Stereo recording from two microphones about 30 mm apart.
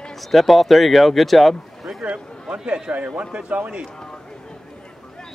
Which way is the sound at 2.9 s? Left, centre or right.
Right.